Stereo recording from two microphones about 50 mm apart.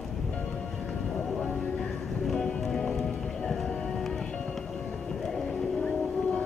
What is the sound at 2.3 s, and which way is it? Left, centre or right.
Music, centre.